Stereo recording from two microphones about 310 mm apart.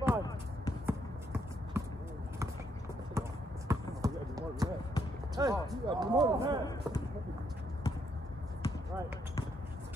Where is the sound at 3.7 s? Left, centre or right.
Centre.